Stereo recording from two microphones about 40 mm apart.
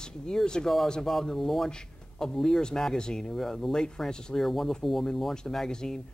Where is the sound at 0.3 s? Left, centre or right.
Centre.